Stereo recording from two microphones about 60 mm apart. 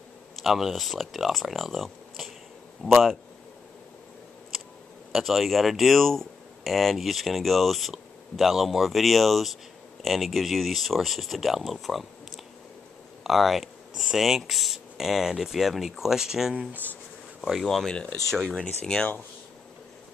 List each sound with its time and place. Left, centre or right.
0.4 s speech: centre
4.5 s a sound: centre
5.1 s speech: centre
13.2 s speech: centre